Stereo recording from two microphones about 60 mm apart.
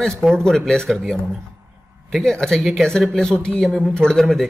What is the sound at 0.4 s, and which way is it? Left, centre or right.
Speech, centre.